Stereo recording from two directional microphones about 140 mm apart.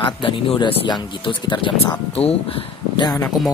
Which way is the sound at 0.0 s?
40° left (ahead or behind).